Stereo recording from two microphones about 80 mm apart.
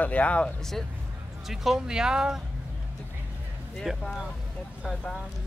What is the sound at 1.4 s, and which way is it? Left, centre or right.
Speech, centre.